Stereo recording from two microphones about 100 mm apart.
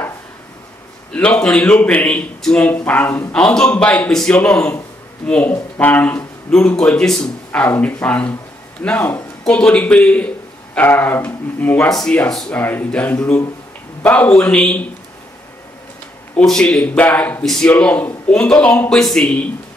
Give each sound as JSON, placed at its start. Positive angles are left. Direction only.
{"t": 1.4, "sound": "a man's voice", "side_deg": 10}
{"t": 3.3, "sound": "a man's voice", "side_deg": 10}
{"t": 7.6, "sound": "a man's voice", "side_deg": 20}
{"t": 11.9, "sound": "speech", "side_deg": 5}
{"t": 12.5, "sound": "a man's voice", "side_deg": 20}
{"t": 16.4, "sound": "a man's voice", "side_deg": 5}